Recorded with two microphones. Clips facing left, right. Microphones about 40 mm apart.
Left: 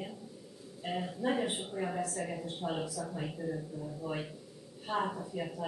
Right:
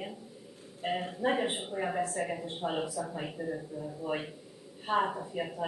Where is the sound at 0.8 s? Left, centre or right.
Right.